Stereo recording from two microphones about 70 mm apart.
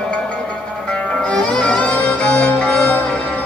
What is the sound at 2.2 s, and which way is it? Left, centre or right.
Music, centre.